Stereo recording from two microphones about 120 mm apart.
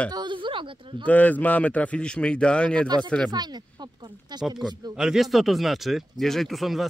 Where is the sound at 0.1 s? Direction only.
40° right (ahead or behind).